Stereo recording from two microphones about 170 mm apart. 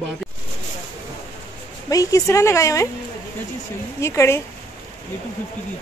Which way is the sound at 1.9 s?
20° left (ahead or behind).